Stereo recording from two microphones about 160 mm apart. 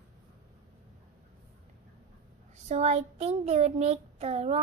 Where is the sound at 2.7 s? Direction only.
40° right (ahead or behind).